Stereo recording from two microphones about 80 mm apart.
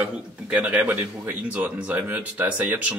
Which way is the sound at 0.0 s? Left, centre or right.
Centre.